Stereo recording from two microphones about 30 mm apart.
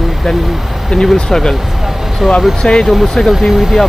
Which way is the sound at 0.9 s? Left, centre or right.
Left.